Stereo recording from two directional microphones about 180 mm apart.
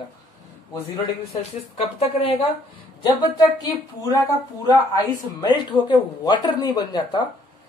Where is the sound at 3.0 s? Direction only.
25° left (ahead or behind).